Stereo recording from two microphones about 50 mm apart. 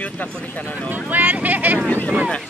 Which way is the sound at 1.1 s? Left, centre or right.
Right.